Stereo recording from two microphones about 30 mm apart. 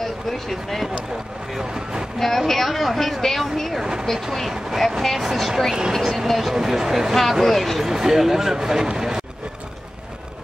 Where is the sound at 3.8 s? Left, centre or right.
Right.